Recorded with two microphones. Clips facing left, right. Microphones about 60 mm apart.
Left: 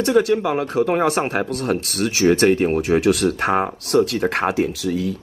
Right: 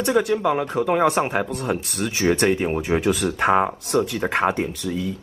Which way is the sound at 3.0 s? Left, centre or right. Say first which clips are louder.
Left 4 dB; left.